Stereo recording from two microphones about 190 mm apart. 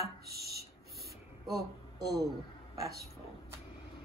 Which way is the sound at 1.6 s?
55° right (ahead or behind).